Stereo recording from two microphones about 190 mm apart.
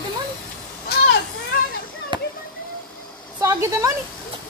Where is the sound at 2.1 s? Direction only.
25° right (ahead or behind).